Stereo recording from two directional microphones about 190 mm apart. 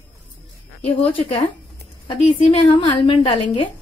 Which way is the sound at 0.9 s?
30° left (ahead or behind).